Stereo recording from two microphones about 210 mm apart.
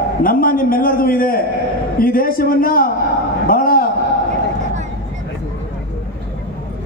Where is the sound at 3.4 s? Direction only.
45° left (ahead or behind).